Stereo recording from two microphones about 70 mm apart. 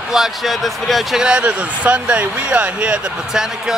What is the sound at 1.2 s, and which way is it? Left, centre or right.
Speech, centre.